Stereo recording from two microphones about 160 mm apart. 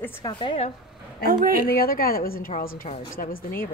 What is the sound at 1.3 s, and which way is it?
Speech, 65° right (ahead or behind).